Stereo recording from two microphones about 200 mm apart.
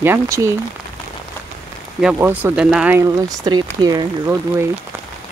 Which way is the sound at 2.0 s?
5° right (ahead or behind).